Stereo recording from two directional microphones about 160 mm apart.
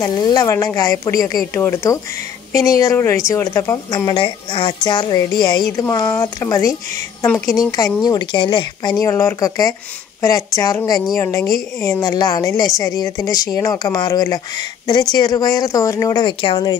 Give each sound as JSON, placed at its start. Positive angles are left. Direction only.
{"t": 0.0, "sound": "speech", "side_deg": 25}